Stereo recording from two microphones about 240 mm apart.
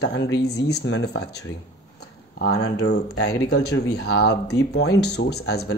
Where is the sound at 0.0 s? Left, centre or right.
Left.